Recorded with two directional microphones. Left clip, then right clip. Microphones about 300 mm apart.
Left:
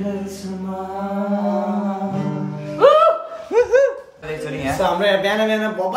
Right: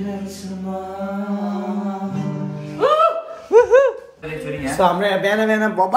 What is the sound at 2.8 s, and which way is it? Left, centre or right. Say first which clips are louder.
Music: left 5 dB; centre.